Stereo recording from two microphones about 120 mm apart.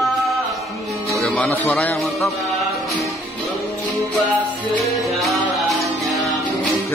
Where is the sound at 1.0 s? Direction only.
Centre (ahead or behind).